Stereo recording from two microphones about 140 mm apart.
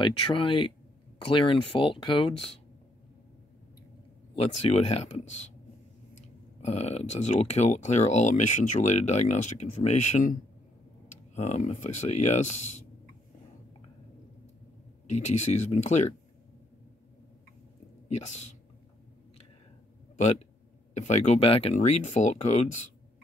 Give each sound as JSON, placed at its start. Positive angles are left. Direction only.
{"t": 0.0, "sound": "speech", "side_deg": 35}
{"t": 4.4, "sound": "speech", "side_deg": 45}
{"t": 11.3, "sound": "speech", "side_deg": 55}
{"t": 15.0, "sound": "speech", "side_deg": 55}
{"t": 18.0, "sound": "speech", "side_deg": 55}
{"t": 20.2, "sound": "speech", "side_deg": 55}